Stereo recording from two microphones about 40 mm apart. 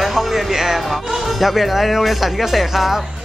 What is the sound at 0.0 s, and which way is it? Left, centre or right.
Speech, centre.